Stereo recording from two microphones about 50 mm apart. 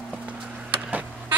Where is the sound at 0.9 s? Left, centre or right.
Right.